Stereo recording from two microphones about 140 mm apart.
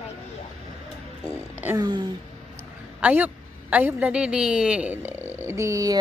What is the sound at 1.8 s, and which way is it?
Speech, 35° right (ahead or behind).